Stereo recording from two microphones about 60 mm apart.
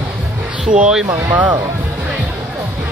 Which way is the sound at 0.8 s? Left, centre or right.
Centre.